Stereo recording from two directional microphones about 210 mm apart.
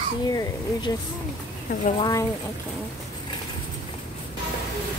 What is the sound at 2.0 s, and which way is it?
Speech, 15° left (ahead or behind).